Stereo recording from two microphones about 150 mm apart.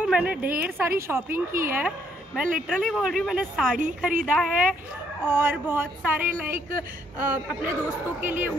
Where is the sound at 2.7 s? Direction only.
5° left (ahead or behind).